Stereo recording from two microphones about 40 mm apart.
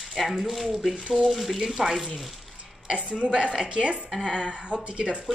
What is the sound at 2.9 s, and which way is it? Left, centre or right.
Speech, right.